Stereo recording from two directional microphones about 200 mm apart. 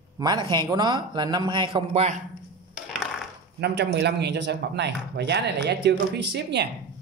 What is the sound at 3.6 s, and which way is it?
Speech, 55° right (ahead or behind).